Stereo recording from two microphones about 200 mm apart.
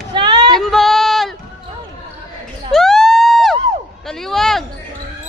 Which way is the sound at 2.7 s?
Centre (ahead or behind).